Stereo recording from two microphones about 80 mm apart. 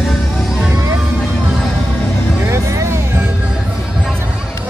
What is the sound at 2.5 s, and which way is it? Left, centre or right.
Music, right.